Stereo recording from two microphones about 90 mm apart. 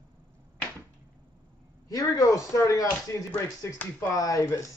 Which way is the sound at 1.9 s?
40° left (ahead or behind).